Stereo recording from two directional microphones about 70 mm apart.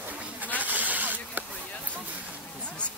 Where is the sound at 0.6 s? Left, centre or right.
Right.